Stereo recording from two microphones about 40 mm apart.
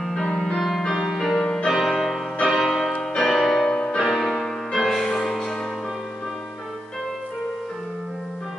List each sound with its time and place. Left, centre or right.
0.0 s music: centre
1.7 s music: centre
2.4 s change ringing: centre
3.0 s music: centre
3.6 s music: left
4.0 s music: centre